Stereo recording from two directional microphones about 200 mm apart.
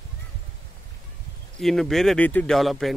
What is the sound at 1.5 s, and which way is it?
Speech, centre (ahead or behind).